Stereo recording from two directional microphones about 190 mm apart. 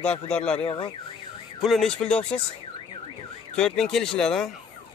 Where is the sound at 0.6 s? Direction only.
30° left (ahead or behind).